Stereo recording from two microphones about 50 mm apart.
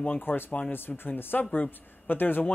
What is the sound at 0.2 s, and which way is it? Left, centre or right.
Speech, left.